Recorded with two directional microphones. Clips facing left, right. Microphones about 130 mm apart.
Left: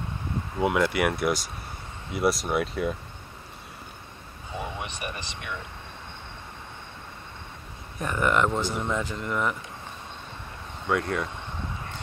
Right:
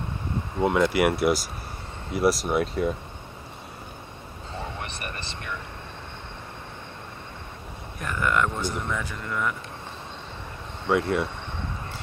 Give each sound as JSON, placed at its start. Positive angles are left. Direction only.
{"t": 0.6, "sound": "speech", "side_deg": 0}
{"t": 4.5, "sound": "a sound", "side_deg": 15}
{"t": 8.0, "sound": "speech", "side_deg": 20}
{"t": 10.9, "sound": "speech", "side_deg": -5}